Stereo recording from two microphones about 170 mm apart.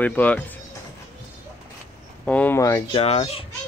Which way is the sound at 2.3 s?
10° left (ahead or behind).